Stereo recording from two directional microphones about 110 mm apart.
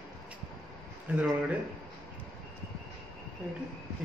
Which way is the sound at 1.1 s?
10° right (ahead or behind).